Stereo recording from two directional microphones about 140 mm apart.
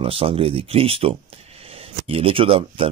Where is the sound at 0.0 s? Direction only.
40° right (ahead or behind).